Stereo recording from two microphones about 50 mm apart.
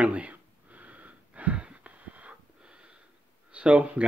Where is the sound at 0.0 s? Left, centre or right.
Right.